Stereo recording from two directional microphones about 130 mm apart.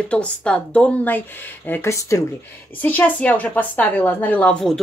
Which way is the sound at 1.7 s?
20° left (ahead or behind).